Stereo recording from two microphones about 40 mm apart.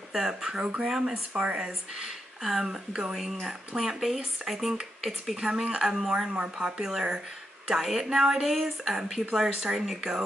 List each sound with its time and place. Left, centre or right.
0.1 s speech: centre
1.3 s speech: right
2.0 s speech: centre
5.4 s speech: centre
6.3 s speech: right
6.8 s speech: centre